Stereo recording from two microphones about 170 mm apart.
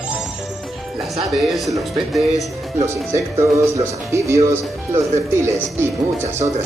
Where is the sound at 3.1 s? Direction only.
15° right (ahead or behind).